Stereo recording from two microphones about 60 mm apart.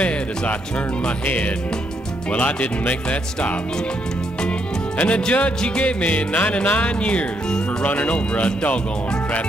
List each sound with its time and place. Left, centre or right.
0.0 s music: left
2.3 s music: left